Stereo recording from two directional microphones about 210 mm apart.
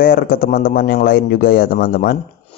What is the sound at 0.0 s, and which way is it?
A man's voice, 45° left (ahead or behind).